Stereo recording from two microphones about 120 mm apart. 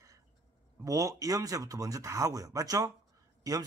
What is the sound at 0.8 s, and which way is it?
Speech, 30° right (ahead or behind).